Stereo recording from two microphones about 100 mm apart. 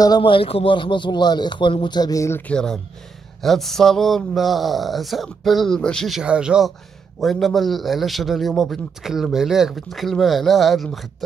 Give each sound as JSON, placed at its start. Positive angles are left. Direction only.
{"t": 0.2, "sound": "a man's voice", "side_deg": 65}
{"t": 2.4, "sound": "a man's voice", "side_deg": 5}
{"t": 6.2, "sound": "speech", "side_deg": -10}
{"t": 7.2, "sound": "a man's voice", "side_deg": 0}